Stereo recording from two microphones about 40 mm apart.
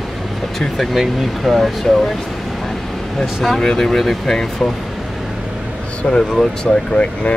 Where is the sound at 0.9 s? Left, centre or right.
Centre.